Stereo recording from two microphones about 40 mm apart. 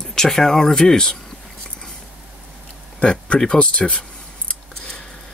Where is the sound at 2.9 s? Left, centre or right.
Left.